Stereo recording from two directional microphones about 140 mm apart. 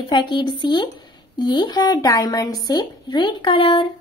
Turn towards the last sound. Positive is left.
turn(degrees=40)  # may be behind; listen again after turning